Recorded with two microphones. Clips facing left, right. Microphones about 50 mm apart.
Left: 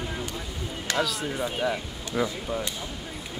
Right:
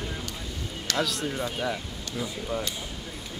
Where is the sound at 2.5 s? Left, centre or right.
Centre.